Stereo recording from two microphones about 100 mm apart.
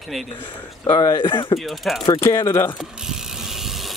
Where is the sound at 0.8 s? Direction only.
60° left (ahead or behind).